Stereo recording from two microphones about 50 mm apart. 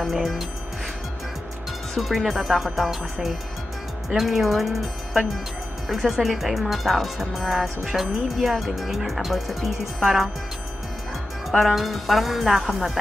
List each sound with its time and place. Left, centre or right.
0.0 s speech: centre
2.0 s speech: centre
4.1 s speech: centre
11.5 s speech: centre